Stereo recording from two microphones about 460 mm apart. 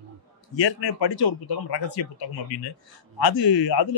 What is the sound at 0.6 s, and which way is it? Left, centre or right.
Speech, left.